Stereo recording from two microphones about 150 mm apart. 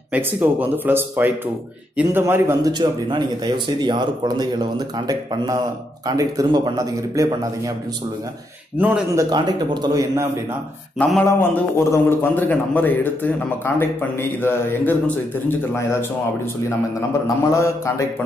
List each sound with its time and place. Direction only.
0.1 s speech: 10° right (ahead or behind)
2.7 s speech: 30° right (ahead or behind)
8.7 s speech: 10° right (ahead or behind)
9.3 s speech: 30° right (ahead or behind)
11.0 s a man's voice: 10° left (ahead or behind)
17.6 s speech: 20° left (ahead or behind)